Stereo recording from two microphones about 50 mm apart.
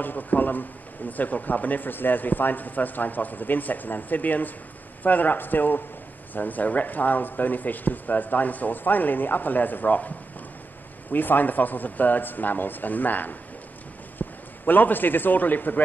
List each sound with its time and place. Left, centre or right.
0.0 s speech: left
14.2 s a sound: left
14.7 s speech: left